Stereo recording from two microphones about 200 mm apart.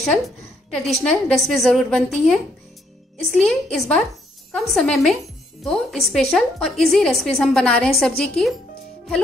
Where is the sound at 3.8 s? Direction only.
5° left (ahead or behind).